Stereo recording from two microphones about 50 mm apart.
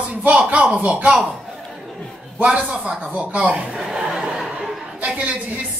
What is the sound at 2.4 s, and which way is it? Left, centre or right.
Speech, right.